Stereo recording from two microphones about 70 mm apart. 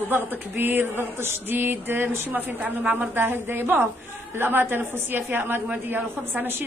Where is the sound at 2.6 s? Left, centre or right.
Right.